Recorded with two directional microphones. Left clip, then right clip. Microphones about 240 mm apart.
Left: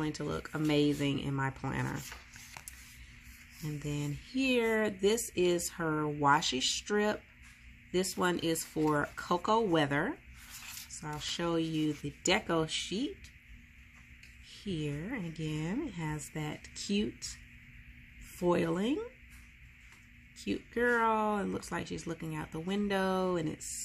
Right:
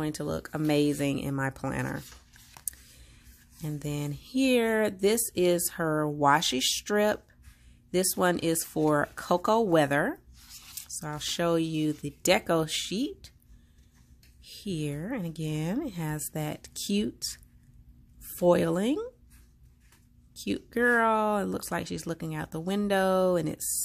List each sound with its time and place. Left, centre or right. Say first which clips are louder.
0.0 s speech: right 4 dB; right
2.0 s dog: left 5 dB; centre
3.6 s speech: right 4 dB; right
14.4 s speech: right 4 dB; right
18.4 s speech: right 7 dB; right
20.3 s speech: right 4 dB; right